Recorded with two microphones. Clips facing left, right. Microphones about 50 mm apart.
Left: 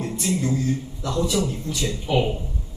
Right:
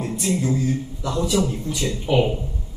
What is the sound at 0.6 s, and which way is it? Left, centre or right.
Speech, centre.